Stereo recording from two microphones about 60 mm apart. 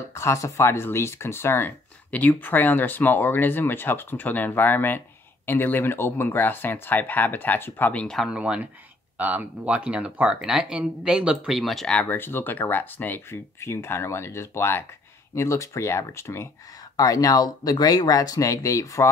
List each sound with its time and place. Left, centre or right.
0.1 s speech: left
2.0 s speech: left
7.9 s speech: centre
8.3 s speech: centre
11.8 s speech: centre
12.1 s speech: left
13.6 s speech: left
15.3 s speech: left
16.9 s speech: left